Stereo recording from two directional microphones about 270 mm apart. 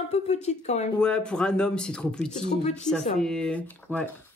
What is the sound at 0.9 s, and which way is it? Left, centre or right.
Speech, centre.